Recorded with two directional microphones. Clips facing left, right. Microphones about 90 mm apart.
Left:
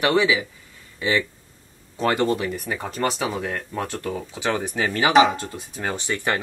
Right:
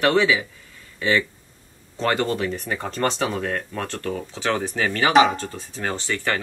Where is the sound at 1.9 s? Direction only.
5° left (ahead or behind).